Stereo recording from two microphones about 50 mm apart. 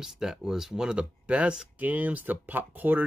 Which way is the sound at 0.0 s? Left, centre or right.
Centre.